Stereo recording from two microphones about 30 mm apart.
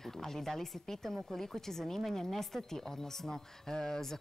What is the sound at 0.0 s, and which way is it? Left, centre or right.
Speech, centre.